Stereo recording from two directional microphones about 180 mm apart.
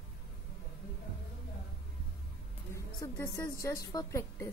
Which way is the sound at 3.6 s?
20° left (ahead or behind).